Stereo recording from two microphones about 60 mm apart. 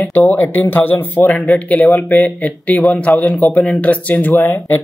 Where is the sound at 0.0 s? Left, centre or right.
Left.